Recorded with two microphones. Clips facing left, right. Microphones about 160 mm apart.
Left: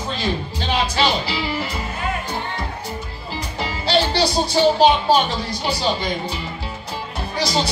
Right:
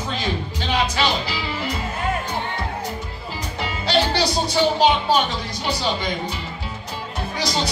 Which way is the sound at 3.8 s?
30° left (ahead or behind).